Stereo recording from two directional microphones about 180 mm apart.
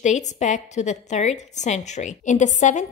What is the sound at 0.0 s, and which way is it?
A woman's voice, 40° left (ahead or behind).